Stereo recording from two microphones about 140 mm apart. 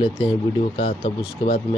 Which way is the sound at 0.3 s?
45° left (ahead or behind).